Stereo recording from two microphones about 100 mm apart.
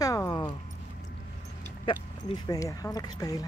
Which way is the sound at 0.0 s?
35° left (ahead or behind).